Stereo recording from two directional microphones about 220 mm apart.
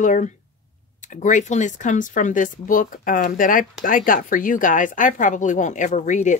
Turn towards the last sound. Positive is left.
turn(degrees=35)  # may be behind; listen again after turning